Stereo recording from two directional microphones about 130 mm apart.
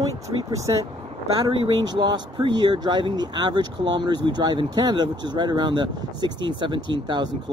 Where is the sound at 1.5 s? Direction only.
45° right (ahead or behind).